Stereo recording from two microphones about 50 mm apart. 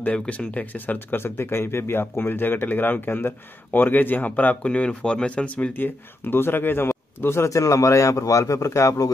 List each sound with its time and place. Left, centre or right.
0.0 s speech: left
0.6 s speech: left
5.7 s speech: left